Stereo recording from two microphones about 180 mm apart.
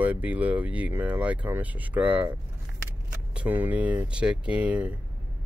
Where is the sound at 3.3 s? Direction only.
10° right (ahead or behind).